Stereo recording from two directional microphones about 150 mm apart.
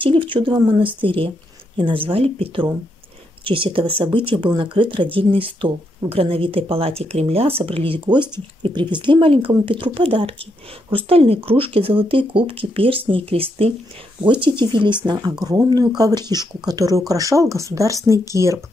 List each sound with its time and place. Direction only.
0.0 s speech: 35° right (ahead or behind)